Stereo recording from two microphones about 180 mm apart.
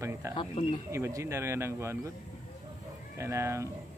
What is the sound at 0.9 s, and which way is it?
Speech, 15° right (ahead or behind).